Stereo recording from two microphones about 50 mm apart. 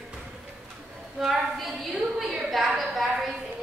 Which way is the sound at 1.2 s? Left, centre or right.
Centre.